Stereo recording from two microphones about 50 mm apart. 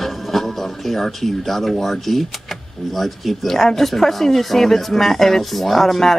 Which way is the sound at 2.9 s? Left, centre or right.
Centre.